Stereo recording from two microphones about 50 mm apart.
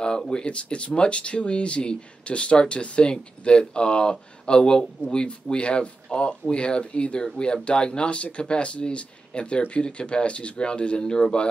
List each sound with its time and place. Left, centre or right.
0.3 s speech: centre